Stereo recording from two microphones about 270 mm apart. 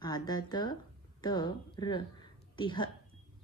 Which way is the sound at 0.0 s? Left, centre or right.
Centre.